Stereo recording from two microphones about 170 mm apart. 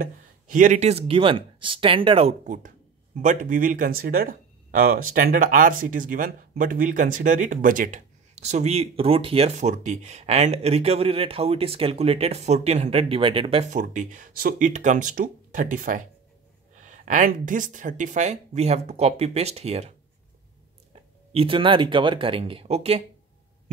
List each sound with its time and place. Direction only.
0.0 s speech: 50° right (ahead or behind); by 2.3 s 30° right (ahead or behind)
2.4 s speech: 50° right (ahead or behind)
20.9 s speech: 35° right (ahead or behind)